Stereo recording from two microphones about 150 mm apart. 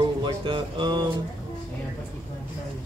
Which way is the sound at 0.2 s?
30° right (ahead or behind).